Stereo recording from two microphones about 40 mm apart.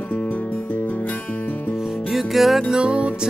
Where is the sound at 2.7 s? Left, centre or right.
Right.